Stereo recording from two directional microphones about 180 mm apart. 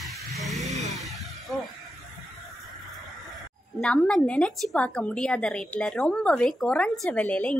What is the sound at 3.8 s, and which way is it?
A woman's voice, 5° left (ahead or behind).